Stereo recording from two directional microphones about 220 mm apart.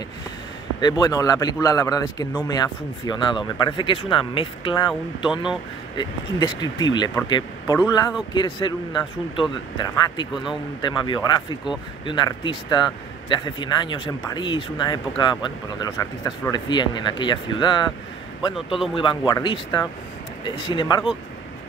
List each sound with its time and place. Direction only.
0.7 s a man's voice: 20° left (ahead or behind)
18.9 s speech: 20° left (ahead or behind)